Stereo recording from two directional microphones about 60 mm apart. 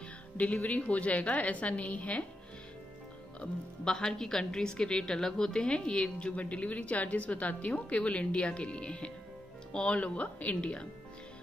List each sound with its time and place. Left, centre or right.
0.4 s a woman's voice: left
3.3 s a woman's voice: centre